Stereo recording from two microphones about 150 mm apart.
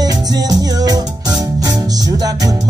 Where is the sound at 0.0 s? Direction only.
25° right (ahead or behind).